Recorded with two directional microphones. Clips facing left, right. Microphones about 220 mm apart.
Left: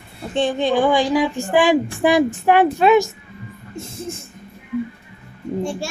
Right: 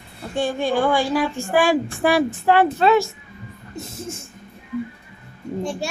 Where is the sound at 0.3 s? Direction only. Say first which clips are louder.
Left 3 dB; 20° left (ahead or behind).